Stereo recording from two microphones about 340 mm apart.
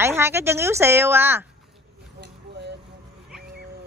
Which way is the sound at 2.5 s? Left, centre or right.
Right.